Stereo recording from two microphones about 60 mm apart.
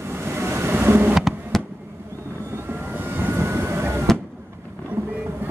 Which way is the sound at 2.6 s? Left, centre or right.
Right.